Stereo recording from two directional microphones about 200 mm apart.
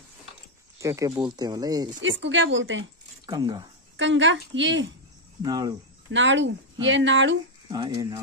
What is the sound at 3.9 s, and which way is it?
Speech, 70° right (ahead or behind).